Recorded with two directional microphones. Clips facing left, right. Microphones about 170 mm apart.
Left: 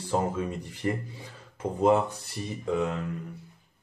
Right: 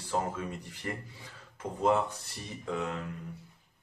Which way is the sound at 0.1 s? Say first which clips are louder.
Left 5 dB; 25° left (ahead or behind).